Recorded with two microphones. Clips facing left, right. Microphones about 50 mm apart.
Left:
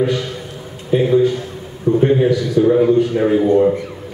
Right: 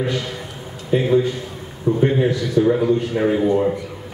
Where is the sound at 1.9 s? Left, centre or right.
Left.